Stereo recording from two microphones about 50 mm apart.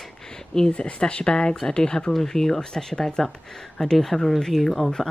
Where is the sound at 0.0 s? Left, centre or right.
Centre.